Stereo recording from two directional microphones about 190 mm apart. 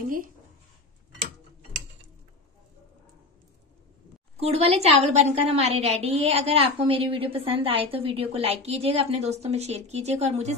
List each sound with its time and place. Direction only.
0.0 s speech: 50° right (ahead or behind)
4.4 s a woman's voice: 35° right (ahead or behind)